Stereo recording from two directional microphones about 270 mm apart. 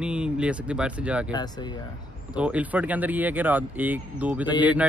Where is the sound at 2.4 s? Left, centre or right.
Centre.